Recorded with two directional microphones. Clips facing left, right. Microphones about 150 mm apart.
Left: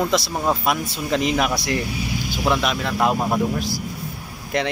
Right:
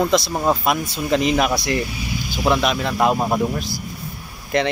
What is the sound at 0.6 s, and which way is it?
A man's voice, centre (ahead or behind).